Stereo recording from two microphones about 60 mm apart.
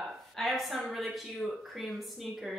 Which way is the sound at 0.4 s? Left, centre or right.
Centre.